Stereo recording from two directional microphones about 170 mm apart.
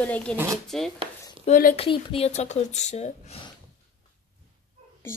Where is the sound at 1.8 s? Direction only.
35° left (ahead or behind).